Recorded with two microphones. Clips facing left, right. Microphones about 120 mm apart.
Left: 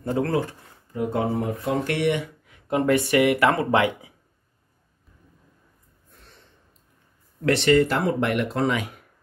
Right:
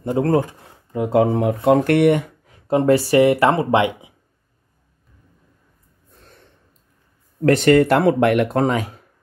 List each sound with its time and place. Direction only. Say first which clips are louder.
0.2 s speech: right 7 dB; 40° right (ahead or behind)
0.9 s speech: right 7 dB; 90° right; by 4.1 s 25° right (ahead or behind)
7.4 s speech: right 5 dB; 45° right (ahead or behind)